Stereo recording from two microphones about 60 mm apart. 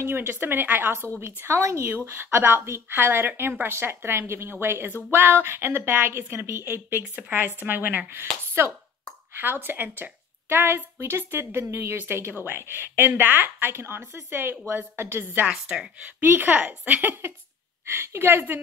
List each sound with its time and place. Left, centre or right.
0.0 s a woman's voice: right
2.0 s a woman's voice: right
8.1 s a woman's voice: right
15.4 s speech: centre
16.2 s a woman's voice: right
17.9 s a woman's voice: right